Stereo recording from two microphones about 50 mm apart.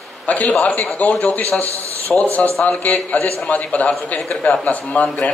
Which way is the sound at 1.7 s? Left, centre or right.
Right.